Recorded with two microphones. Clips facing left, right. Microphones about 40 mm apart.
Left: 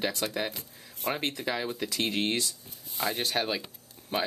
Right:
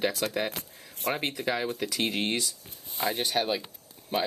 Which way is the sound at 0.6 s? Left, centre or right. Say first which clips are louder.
Right 3 dB; right.